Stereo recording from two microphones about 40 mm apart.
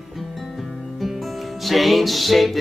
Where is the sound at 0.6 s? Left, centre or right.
Centre.